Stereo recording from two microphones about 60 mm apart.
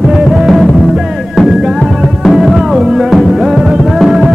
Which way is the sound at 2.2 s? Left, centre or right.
Centre.